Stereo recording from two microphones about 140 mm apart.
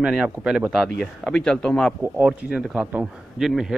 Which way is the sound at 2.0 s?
10° right (ahead or behind).